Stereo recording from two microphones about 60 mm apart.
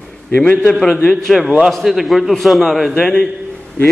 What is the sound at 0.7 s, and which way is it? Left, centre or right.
A man's voice, centre.